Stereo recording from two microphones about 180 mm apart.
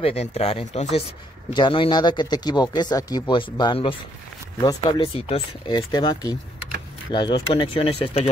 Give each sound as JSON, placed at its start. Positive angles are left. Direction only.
{"t": 0.0, "sound": "speech", "side_deg": 35}